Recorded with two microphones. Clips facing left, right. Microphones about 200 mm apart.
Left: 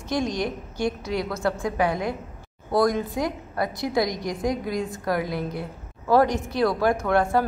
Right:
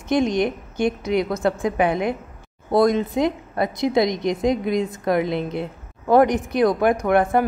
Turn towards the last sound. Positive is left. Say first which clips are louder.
# right 3 dB
turn(degrees=-20)  # may be behind; listen again after turning